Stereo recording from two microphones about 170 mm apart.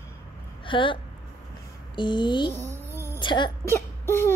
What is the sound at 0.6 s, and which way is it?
Speech, 30° left (ahead or behind).